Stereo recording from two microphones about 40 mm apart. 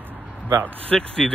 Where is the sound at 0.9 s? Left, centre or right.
Centre.